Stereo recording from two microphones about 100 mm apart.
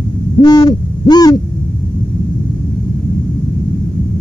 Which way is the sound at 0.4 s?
45° left (ahead or behind).